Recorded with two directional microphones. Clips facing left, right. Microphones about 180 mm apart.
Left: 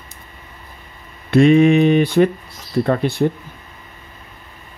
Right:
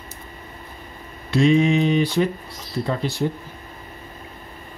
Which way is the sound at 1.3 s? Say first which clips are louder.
Left 6 dB; 60° left (ahead or behind).